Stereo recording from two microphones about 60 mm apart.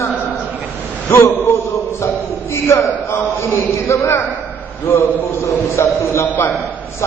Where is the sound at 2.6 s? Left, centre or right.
Left.